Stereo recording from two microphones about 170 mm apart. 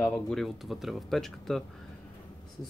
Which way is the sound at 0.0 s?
Centre (ahead or behind).